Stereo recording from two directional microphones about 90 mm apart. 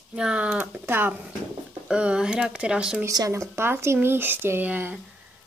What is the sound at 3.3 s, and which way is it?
Speech, 30° right (ahead or behind).